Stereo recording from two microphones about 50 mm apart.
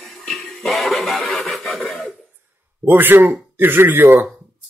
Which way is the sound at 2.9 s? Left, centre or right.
Right.